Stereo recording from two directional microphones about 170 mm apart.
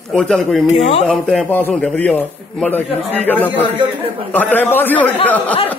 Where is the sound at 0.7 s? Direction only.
35° left (ahead or behind).